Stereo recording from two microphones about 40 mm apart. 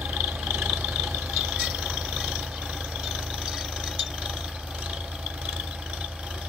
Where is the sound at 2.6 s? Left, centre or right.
Centre.